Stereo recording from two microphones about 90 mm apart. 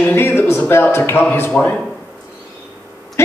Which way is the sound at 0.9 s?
25° left (ahead or behind).